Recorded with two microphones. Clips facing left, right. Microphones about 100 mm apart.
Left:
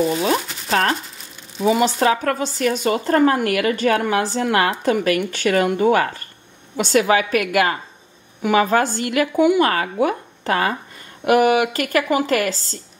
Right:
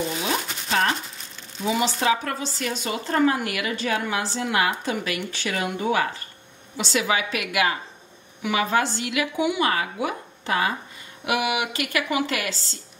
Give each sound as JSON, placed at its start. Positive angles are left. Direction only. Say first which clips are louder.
{"t": 0.7, "sound": "speech", "louder": "left 4 dB", "side_deg": 45}
{"t": 1.6, "sound": "speech", "louder": "left 7 dB", "side_deg": 55}